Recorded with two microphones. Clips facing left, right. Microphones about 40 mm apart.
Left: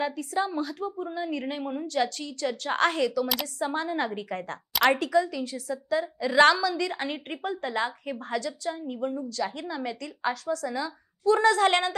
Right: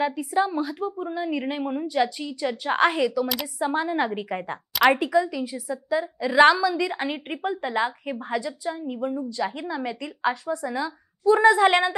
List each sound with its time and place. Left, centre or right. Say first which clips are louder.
0.0 s a woman's voice: right 5 dB; centre